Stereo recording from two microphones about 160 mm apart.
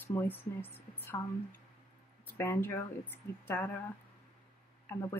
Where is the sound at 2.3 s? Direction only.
15° left (ahead or behind).